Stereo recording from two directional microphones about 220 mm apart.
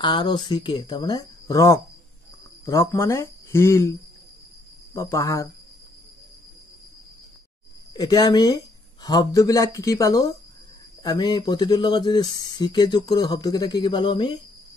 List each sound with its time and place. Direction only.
0.0 s speech: 20° left (ahead or behind)
4.9 s speech: 15° left (ahead or behind)
7.9 s speech: 20° left (ahead or behind)